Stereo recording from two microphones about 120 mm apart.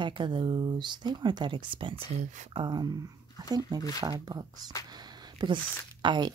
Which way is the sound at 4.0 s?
35° right (ahead or behind).